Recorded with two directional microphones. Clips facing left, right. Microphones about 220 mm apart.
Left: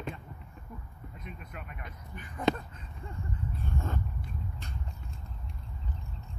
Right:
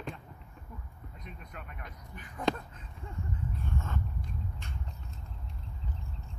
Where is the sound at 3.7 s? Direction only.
40° left (ahead or behind).